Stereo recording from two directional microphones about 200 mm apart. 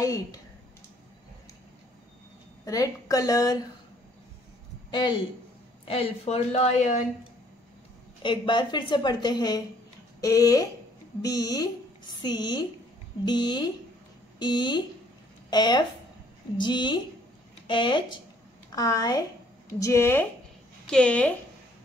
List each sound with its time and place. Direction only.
0.0 s a woman's voice: 15° left (ahead or behind)
2.6 s a woman's voice: 15° left (ahead or behind)
5.9 s a woman's voice: 30° left (ahead or behind)
8.2 s a woman's voice: 25° left (ahead or behind); by 21.4 s 5° left (ahead or behind)